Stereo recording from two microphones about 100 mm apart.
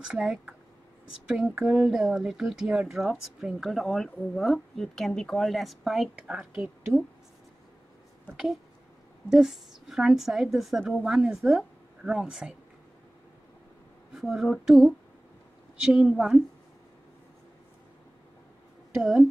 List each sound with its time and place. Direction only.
0.0 s a woman's voice: 10° right (ahead or behind)
9.3 s a woman's voice: 5° right (ahead or behind)
14.1 s a woman's voice: 5° right (ahead or behind)
18.9 s a woman's voice: 5° right (ahead or behind)